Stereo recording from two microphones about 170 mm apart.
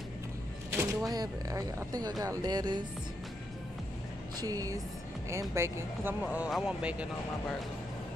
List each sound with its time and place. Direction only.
0.7 s speech: 20° right (ahead or behind)
4.4 s speech: 20° right (ahead or behind)